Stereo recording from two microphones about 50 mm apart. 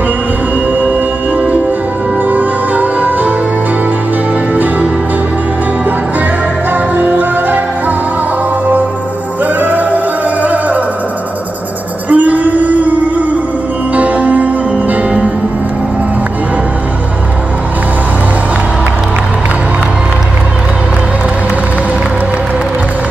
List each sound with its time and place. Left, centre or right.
2.2 s music: right
6.7 s music: right
9.6 s music: right
12.1 s a sound: right
13.9 s music: right